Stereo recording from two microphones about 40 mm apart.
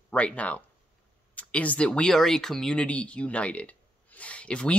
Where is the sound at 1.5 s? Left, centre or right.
Left.